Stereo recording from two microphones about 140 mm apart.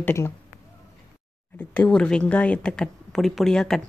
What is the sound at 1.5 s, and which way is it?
Speech, 10° left (ahead or behind).